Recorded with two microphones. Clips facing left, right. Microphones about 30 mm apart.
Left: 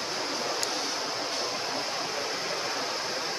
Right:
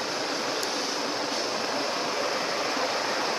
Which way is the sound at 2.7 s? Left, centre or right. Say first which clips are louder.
Right 4 dB; right.